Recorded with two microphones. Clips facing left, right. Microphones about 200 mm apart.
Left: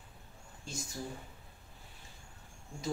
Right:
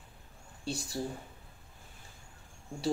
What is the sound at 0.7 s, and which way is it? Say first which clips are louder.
Speech: right 7 dB; 35° right (ahead or behind).